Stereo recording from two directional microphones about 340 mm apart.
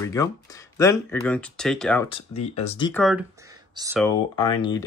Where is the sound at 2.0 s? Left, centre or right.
Centre.